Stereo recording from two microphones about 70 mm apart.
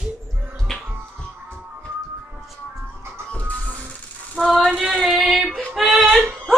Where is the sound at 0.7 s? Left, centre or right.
Centre.